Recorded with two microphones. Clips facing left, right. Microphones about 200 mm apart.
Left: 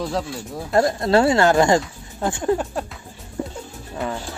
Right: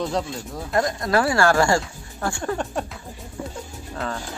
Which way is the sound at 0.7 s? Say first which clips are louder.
Left 4 dB; 30° left (ahead or behind).